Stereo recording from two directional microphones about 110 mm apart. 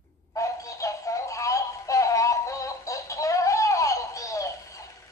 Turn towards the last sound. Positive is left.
turn(degrees=30)  # may be behind; listen again after turning